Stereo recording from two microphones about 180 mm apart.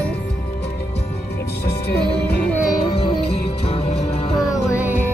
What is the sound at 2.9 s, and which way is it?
Music, 35° left (ahead or behind).